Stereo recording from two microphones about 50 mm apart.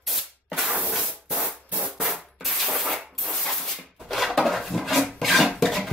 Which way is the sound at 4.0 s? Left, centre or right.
Centre.